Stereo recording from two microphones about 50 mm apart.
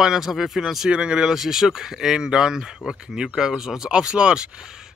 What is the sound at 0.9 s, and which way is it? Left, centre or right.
Speech, centre.